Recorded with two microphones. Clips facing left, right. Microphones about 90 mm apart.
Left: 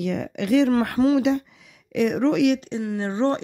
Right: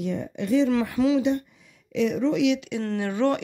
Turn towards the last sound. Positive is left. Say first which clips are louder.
# left 1 dB
turn(degrees=30)  # may be behind; listen again after turning